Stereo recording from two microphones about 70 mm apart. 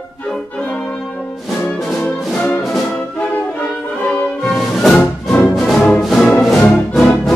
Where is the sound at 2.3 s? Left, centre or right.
Left.